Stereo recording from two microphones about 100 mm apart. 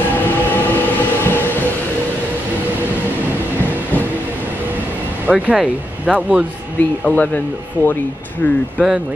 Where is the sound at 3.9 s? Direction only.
20° left (ahead or behind).